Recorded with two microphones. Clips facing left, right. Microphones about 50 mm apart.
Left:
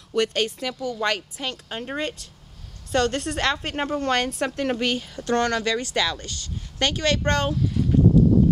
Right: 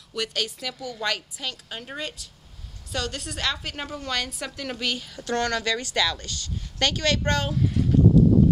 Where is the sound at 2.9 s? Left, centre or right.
Left.